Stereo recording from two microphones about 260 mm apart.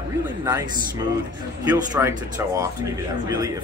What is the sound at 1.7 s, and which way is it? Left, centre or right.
Speech, centre.